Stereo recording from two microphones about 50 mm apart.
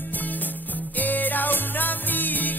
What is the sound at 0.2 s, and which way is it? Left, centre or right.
Music, left.